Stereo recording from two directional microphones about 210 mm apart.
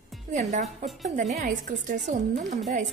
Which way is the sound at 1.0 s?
35° right (ahead or behind).